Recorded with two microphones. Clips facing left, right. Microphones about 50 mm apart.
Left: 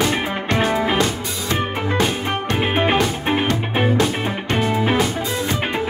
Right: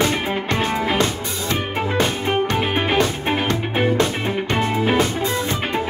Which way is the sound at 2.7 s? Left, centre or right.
Centre.